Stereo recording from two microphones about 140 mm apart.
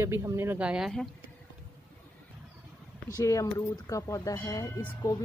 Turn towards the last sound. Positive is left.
turn(degrees=25)  # may be behind; listen again after turning